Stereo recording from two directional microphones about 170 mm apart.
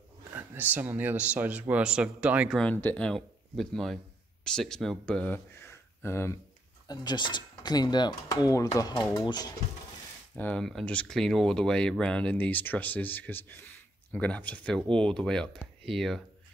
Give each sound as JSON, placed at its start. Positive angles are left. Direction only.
{"t": 0.3, "sound": "speech", "side_deg": -10}
{"t": 2.6, "sound": "speech", "side_deg": 10}
{"t": 10.3, "sound": "speech", "side_deg": 10}